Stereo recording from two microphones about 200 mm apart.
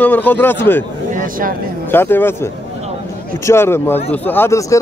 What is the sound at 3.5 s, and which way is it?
Speech, 10° left (ahead or behind).